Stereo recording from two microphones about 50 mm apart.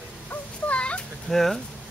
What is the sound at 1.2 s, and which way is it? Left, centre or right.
Speech, centre.